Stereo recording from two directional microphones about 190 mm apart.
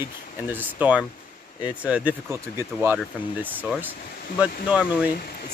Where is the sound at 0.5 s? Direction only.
10° right (ahead or behind).